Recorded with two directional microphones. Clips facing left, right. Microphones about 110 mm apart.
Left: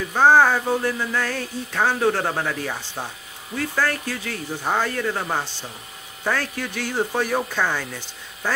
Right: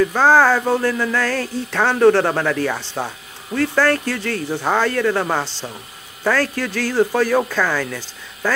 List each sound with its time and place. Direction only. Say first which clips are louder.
0.1 s music: right 2 dB; 90° right
3.5 s speech: right 7 dB; 75° right (ahead or behind); by 5.7 s 90° right
6.2 s music: right 6 dB; 85° right